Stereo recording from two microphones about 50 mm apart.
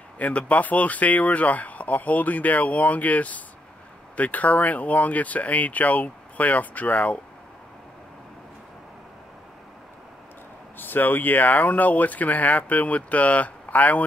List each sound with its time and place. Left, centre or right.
0.2 s speech: left
10.8 s speech: left